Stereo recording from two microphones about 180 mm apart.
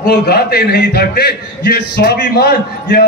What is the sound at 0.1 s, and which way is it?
A man's voice, 60° left (ahead or behind).